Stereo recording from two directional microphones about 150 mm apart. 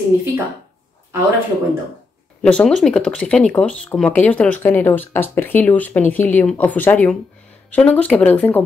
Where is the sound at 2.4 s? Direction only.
5° left (ahead or behind).